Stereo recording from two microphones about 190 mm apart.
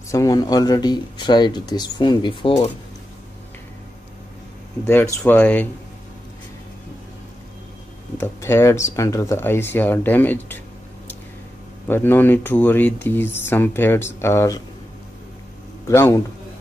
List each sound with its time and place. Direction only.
0.1 s speech: 20° left (ahead or behind)
4.8 s speech: 10° left (ahead or behind)
8.2 s speech: 15° left (ahead or behind)
11.9 s speech: 10° left (ahead or behind)
15.9 s speech: 15° left (ahead or behind)